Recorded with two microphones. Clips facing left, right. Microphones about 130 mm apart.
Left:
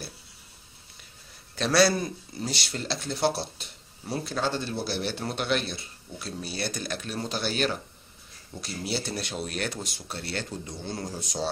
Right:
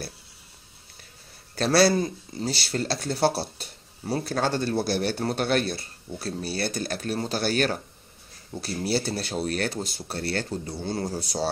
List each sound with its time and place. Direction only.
1.5 s speech: 35° right (ahead or behind)